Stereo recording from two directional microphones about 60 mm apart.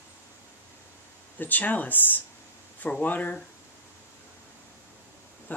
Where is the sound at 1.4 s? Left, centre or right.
Left.